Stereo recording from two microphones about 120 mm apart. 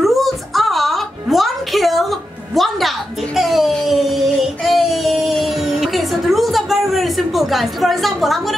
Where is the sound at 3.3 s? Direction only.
Centre (ahead or behind).